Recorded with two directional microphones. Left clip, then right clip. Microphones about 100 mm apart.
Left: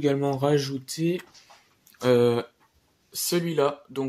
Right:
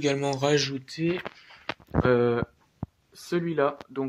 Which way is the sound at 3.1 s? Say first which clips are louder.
Left 2 dB; 25° left (ahead or behind).